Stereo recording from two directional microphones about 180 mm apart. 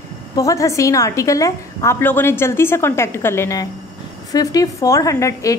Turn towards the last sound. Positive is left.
turn(degrees=15)  # may be behind; listen again after turning